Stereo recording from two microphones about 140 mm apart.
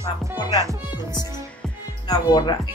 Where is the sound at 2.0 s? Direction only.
30° left (ahead or behind).